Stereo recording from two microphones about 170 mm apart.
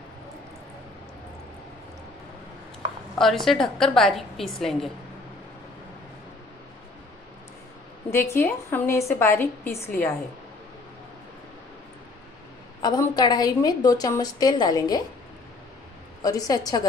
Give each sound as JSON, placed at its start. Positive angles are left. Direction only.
{"t": 3.2, "sound": "a woman's voice", "side_deg": 0}
{"t": 8.1, "sound": "a woman's voice", "side_deg": 15}
{"t": 12.8, "sound": "a woman's voice", "side_deg": 25}
{"t": 16.2, "sound": "a woman's voice", "side_deg": 20}